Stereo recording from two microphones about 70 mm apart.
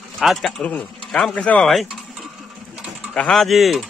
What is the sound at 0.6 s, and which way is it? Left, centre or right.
Speech, centre.